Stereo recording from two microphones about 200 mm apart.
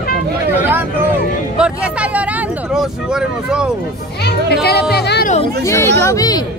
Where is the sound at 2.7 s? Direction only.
5° right (ahead or behind).